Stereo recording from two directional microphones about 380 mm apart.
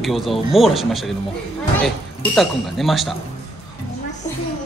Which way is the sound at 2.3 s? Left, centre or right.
Centre.